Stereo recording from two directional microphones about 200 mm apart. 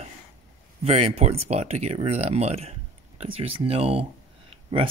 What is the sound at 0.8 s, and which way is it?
Speech, 30° right (ahead or behind).